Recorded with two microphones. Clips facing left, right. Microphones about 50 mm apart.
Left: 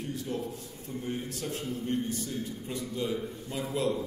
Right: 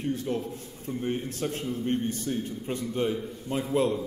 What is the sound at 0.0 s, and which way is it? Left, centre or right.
A man's voice, right.